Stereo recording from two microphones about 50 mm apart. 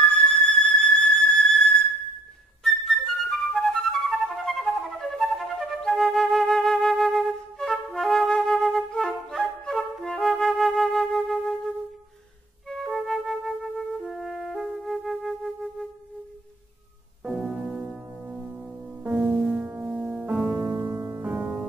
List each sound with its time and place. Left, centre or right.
0.1 s music: centre
5.8 s flute: centre
17.2 s music: centre
19.1 s music: right
19.5 s music: right
20.3 s music: centre; by 21.5 s right